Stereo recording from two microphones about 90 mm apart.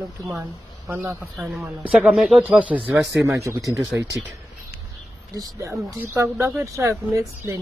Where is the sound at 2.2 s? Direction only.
15° right (ahead or behind).